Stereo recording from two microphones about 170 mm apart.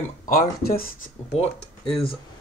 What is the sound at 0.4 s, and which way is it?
Speech, 60° left (ahead or behind).